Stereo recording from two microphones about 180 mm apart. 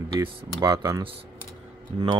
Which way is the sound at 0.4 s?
20° right (ahead or behind).